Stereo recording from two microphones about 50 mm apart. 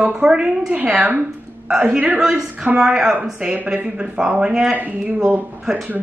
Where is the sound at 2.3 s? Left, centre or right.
Centre.